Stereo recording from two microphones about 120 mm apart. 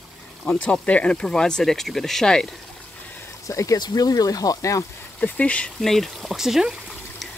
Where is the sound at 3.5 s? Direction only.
25° left (ahead or behind).